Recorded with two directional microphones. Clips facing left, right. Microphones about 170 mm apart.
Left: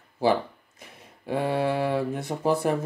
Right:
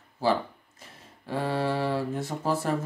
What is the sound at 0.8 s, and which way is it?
Speech, 15° left (ahead or behind).